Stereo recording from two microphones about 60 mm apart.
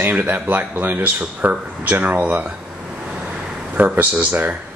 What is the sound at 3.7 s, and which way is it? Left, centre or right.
Speech, right.